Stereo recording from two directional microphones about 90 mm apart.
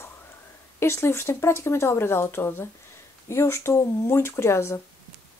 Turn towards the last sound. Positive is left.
turn(degrees=30)  # may be behind; listen again after turning